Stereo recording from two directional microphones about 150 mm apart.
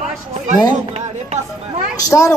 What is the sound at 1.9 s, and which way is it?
Speech, 20° left (ahead or behind).